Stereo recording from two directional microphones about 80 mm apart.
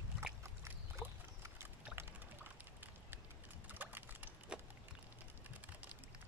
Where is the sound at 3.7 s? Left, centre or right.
Right.